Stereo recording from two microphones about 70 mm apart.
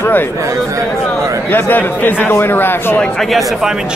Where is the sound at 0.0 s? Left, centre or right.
Left.